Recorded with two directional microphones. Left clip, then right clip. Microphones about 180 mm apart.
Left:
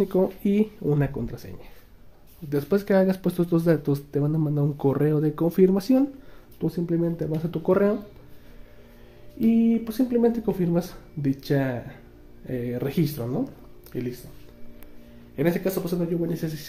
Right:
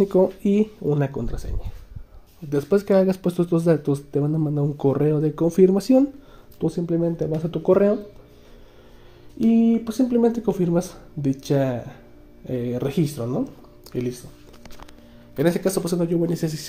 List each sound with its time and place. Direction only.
0.2 s speech: 5° right (ahead or behind)
2.5 s speech: 10° right (ahead or behind)
9.8 s speech: 15° right (ahead or behind)
13.9 s speech: 20° right (ahead or behind)
15.3 s speech: 30° right (ahead or behind)